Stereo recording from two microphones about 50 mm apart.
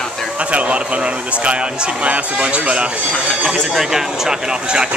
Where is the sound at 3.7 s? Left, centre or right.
Centre.